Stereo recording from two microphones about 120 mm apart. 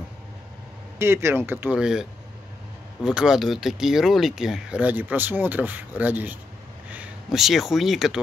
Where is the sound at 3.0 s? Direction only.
5° right (ahead or behind).